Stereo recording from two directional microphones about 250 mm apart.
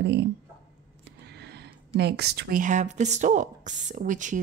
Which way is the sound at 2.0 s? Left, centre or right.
Right.